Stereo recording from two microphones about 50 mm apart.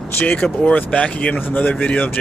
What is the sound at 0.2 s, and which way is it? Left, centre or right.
Speech, left.